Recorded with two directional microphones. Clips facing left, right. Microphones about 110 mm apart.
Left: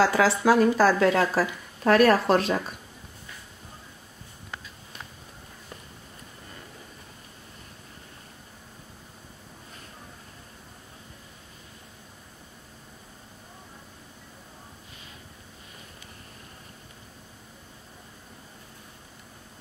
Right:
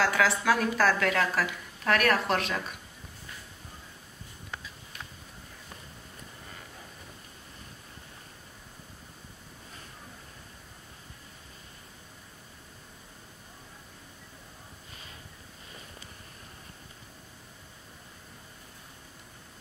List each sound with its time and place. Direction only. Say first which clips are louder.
0.0 s a woman's voice: left 5 dB; 35° left (ahead or behind)